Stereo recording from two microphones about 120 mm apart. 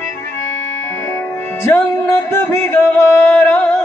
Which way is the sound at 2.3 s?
20° left (ahead or behind).